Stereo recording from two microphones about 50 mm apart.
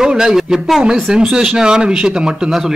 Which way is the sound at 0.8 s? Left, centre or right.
Centre.